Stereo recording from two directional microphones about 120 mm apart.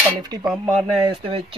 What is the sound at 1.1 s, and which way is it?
Speech, 50° right (ahead or behind).